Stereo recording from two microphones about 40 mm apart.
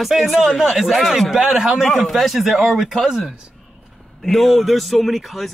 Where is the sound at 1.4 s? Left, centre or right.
Centre.